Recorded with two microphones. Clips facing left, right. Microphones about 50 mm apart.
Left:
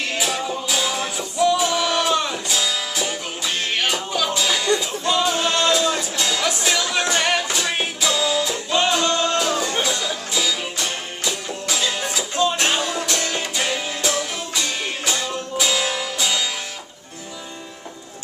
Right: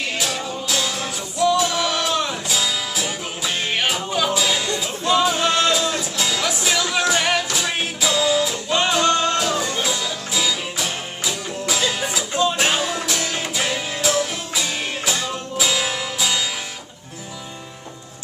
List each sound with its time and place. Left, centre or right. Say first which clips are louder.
0.1 s music: left 2 dB; centre